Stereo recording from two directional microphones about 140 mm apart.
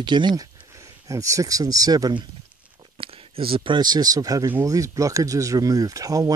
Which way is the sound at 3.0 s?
40° right (ahead or behind).